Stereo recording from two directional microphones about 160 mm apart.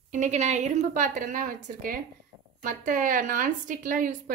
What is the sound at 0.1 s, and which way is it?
A woman's voice, 50° right (ahead or behind).